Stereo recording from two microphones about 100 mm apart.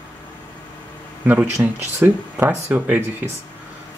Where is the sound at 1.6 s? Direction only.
25° right (ahead or behind).